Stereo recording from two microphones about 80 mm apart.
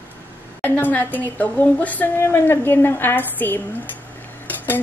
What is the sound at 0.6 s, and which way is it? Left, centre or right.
A woman's voice, left.